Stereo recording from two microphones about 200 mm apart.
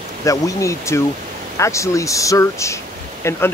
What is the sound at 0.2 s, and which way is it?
Speech, 15° left (ahead or behind).